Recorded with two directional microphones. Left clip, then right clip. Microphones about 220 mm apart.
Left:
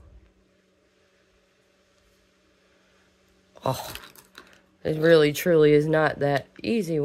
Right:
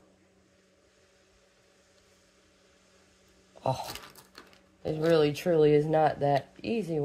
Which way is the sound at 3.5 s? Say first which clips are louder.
Left 3 dB; 40° left (ahead or behind).